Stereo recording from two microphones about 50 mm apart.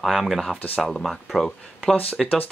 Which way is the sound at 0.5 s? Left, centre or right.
Left.